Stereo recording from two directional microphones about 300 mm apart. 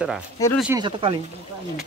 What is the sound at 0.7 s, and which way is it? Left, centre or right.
Speech, centre.